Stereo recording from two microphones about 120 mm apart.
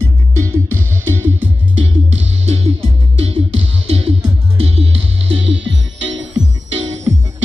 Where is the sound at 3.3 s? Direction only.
50° right (ahead or behind).